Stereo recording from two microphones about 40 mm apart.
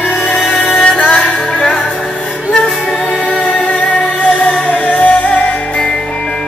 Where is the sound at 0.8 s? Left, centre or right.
Left.